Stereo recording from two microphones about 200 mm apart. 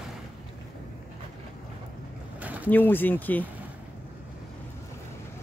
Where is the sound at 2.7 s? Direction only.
10° left (ahead or behind).